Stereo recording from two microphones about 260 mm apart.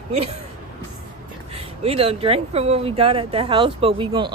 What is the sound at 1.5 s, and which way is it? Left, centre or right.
Speech, right.